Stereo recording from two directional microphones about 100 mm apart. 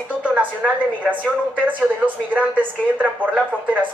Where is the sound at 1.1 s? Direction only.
15° right (ahead or behind).